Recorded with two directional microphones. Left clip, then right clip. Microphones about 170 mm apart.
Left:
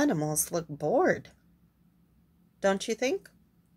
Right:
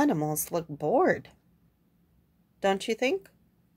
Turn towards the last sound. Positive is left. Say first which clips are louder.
# right 2 dB
turn(degrees=-10)  # may be behind; listen again after turning